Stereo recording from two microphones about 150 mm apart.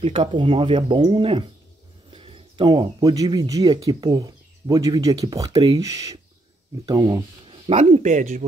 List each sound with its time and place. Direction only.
0.0 s speech: 40° right (ahead or behind)
7.4 s speech: 40° right (ahead or behind); by 8.5 s 55° right (ahead or behind)